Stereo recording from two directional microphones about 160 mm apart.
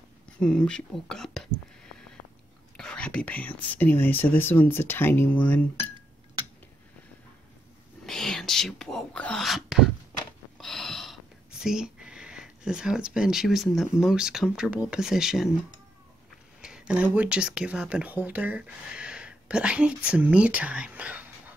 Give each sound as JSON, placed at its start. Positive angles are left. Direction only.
{"t": 0.4, "sound": "speech", "side_deg": 5}
{"t": 2.8, "sound": "speech", "side_deg": 5}
{"t": 5.8, "sound": "dishes", "side_deg": -30}
{"t": 8.0, "sound": "whispering", "side_deg": 0}
{"t": 10.6, "sound": "speech", "side_deg": 0}
{"t": 16.6, "sound": "speech", "side_deg": -5}